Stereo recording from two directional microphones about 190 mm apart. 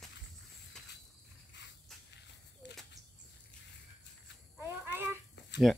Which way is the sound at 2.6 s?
65° left (ahead or behind).